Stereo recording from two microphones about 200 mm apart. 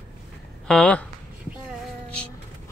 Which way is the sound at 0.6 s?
5° left (ahead or behind).